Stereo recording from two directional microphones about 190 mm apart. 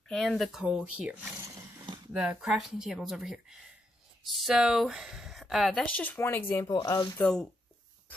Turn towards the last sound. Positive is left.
turn(degrees=5)  # may be behind; listen again after turning